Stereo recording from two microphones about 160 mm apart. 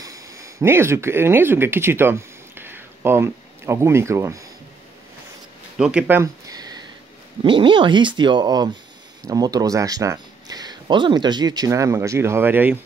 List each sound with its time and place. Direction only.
0.0 s speech: 20° right (ahead or behind)
5.8 s speech: 5° right (ahead or behind)